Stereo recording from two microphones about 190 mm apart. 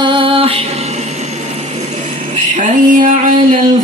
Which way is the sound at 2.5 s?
45° right (ahead or behind).